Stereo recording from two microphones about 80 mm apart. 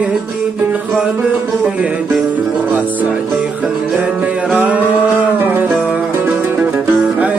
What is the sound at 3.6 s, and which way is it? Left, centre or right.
Music, centre.